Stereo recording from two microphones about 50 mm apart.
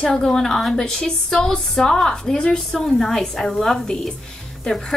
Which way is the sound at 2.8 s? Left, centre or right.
Centre.